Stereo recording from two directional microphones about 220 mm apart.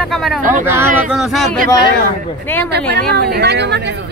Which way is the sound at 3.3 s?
45° right (ahead or behind).